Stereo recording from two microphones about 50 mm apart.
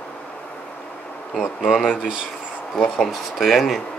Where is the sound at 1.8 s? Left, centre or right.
Left.